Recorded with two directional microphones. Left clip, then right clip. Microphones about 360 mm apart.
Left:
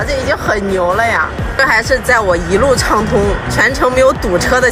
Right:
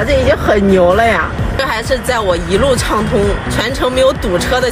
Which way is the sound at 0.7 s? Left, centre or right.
Right.